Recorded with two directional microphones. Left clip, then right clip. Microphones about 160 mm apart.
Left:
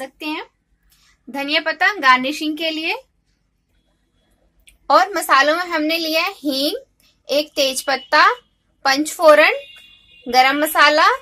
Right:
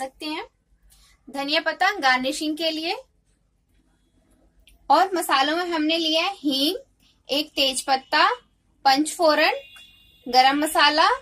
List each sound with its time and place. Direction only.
1.3 s a child's voice: 30° left (ahead or behind)
4.8 s a child's voice: 40° left (ahead or behind)